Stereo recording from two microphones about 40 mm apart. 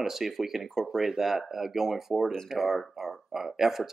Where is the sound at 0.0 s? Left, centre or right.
Centre.